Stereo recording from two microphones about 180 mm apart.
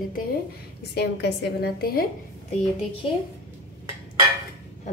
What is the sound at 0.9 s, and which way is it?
A woman's voice, 65° left (ahead or behind).